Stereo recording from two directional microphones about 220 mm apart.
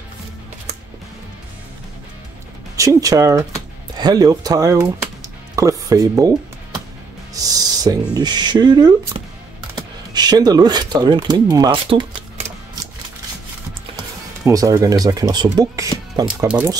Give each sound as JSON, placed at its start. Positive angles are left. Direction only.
{"t": 2.7, "sound": "speech", "side_deg": -15}
{"t": 13.9, "sound": "speech", "side_deg": -15}